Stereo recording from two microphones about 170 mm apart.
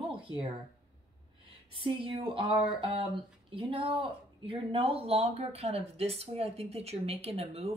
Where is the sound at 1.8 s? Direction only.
30° right (ahead or behind).